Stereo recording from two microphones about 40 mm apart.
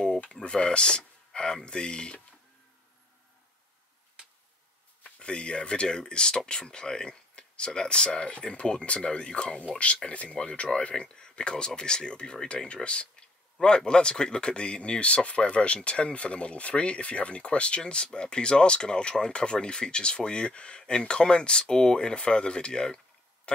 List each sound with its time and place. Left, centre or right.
0.3 s a sound: left
1.5 s speech: left
5.0 s speech: left